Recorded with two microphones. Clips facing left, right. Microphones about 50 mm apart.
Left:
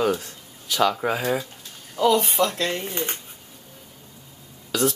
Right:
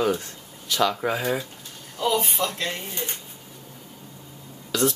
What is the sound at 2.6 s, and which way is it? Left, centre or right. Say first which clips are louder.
Speech: left 4 dB; left.